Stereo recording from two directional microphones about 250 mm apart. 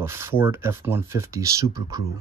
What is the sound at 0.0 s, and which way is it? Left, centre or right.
Speech, centre.